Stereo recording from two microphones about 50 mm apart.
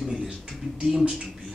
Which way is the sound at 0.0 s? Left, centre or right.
Centre.